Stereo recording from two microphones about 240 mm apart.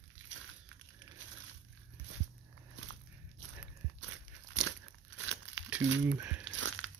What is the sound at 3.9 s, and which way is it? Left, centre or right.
Crunch, right.